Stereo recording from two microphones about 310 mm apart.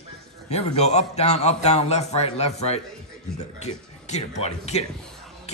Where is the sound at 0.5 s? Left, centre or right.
Left.